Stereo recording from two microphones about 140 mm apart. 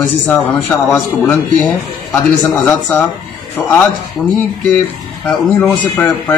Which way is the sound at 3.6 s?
10° left (ahead or behind).